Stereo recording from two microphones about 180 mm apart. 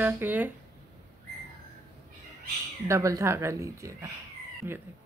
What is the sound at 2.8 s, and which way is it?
Speech, 15° right (ahead or behind).